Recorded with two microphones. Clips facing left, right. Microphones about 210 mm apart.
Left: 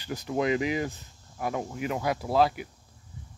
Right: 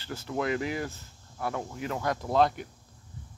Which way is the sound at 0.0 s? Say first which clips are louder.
Left 3 dB; 15° left (ahead or behind).